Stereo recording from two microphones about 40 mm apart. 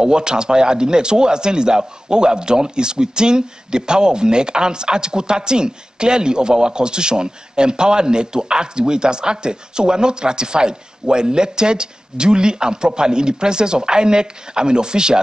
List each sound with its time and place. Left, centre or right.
0.0 s a man's voice: centre